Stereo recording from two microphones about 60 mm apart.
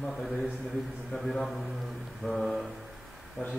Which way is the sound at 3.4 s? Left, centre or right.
Centre.